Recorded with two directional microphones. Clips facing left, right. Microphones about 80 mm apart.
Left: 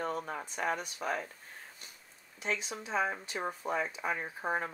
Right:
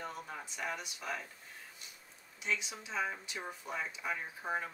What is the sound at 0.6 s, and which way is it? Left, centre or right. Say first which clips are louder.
Speech: left 7 dB; left.